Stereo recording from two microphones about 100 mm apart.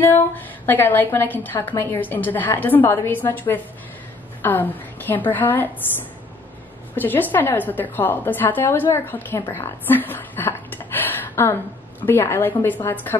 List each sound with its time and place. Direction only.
0.1 s a woman's voice: 20° left (ahead or behind)
7.0 s a woman's voice: 20° left (ahead or behind)